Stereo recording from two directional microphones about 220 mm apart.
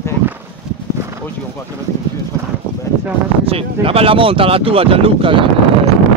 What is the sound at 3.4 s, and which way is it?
Speech, 25° right (ahead or behind).